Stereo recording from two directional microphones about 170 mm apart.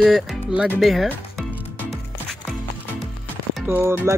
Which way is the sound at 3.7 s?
15° right (ahead or behind).